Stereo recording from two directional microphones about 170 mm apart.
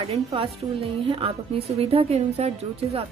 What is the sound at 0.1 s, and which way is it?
A woman's voice, 35° right (ahead or behind).